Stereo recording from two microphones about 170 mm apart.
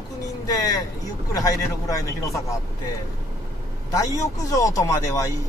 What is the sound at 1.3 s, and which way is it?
A man's voice, 20° left (ahead or behind).